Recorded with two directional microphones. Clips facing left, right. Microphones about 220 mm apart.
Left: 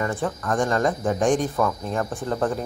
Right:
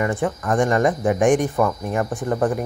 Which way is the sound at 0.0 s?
15° right (ahead or behind).